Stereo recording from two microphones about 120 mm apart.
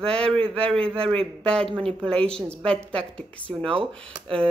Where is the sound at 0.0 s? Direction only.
5° left (ahead or behind).